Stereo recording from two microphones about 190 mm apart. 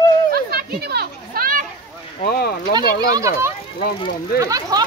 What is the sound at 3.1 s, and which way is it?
Speech, 15° right (ahead or behind).